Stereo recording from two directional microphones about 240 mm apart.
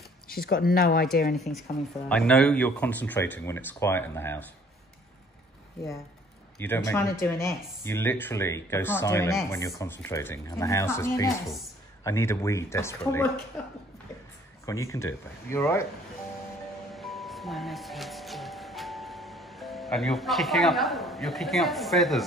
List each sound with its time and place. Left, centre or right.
0.3 s speech: left
1.3 s speech: centre
6.6 s speech: centre
14.7 s speech: centre
16.9 s music: centre